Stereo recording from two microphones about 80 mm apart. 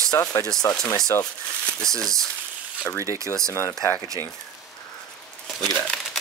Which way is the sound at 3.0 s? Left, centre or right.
Right.